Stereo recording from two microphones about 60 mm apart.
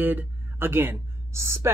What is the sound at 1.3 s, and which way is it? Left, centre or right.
Speech, right.